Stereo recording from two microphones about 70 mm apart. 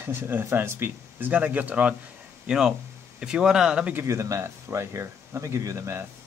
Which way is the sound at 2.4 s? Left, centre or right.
Centre.